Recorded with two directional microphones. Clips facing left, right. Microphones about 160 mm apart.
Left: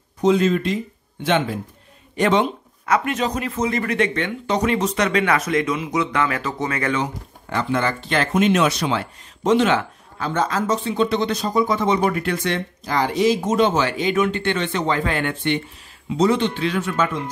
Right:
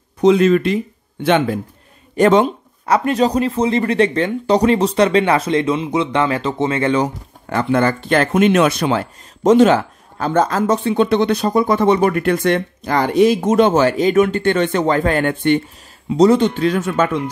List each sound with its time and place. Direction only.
0.2 s speech: 70° right (ahead or behind)
2.1 s speech: 45° right (ahead or behind)
7.4 s speech: 50° right (ahead or behind)